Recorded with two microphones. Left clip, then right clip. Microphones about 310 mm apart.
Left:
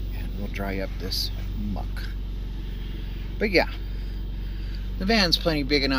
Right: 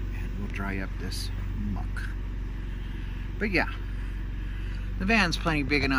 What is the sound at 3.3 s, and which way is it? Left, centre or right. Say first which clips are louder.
Speech: left 5 dB; centre.